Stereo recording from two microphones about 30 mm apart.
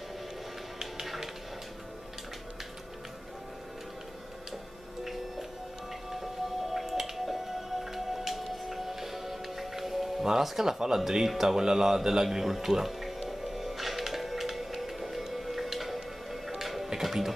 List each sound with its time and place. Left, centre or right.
1.0 s music: centre
5.0 s music: centre
6.7 s music: centre
10.2 s speech: centre
11.1 s a sound: centre
16.9 s music: centre